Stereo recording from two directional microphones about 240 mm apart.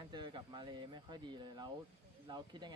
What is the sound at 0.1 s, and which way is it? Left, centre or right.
Speech, centre.